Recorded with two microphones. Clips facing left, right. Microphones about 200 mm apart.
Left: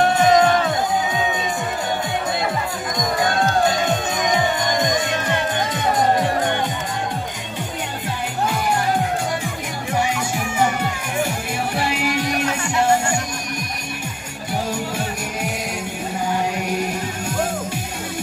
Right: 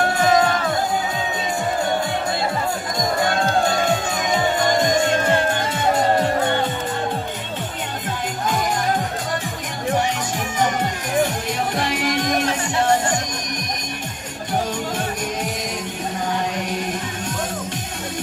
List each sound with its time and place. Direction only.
0.1 s music: 20° left (ahead or behind)
4.7 s music: 20° left (ahead or behind)
11.2 s music: 10° left (ahead or behind)
16.5 s music: 10° left (ahead or behind)